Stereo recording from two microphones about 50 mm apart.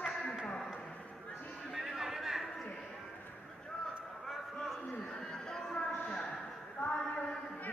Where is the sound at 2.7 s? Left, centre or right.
Centre.